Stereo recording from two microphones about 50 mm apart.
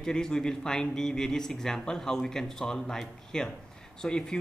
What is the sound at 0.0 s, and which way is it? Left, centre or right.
Speech, centre.